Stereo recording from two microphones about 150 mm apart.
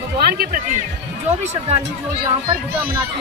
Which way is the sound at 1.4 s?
50° right (ahead or behind).